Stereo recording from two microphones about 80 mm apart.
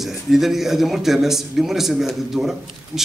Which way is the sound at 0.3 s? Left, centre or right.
Centre.